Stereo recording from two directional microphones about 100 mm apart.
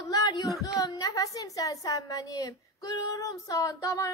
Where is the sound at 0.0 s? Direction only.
35° left (ahead or behind).